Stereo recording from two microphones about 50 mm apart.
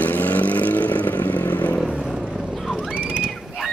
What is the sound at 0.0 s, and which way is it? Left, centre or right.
Vehicle, left.